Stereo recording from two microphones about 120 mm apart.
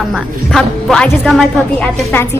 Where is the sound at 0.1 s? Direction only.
Centre (ahead or behind).